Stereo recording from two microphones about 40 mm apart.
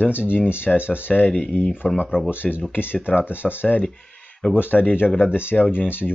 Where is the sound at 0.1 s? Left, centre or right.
Left.